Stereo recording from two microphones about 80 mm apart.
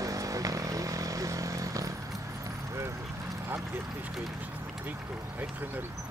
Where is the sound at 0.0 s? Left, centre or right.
Right.